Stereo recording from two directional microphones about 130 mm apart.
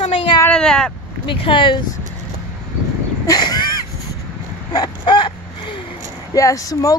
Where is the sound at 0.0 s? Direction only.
55° left (ahead or behind).